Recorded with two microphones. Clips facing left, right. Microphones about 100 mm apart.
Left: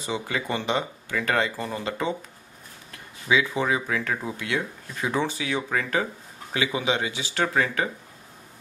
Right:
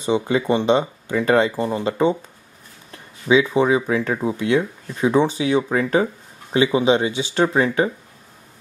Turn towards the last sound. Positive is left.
turn(degrees=-25)  # may be behind; listen again after turning